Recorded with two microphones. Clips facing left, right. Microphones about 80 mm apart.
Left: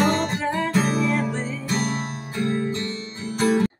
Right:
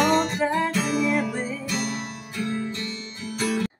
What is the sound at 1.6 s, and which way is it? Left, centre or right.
Music, left.